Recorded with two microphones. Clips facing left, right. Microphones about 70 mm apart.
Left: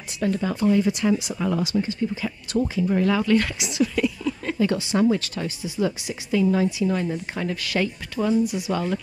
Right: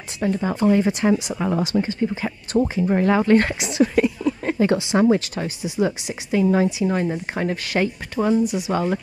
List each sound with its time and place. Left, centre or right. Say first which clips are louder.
0.2 s speech: right 2 dB; right
8.5 s speech: right 2 dB; centre
8.7 s speech: right 5 dB; right